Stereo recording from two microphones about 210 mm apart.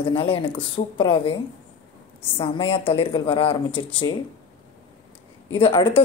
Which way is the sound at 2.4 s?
25° left (ahead or behind).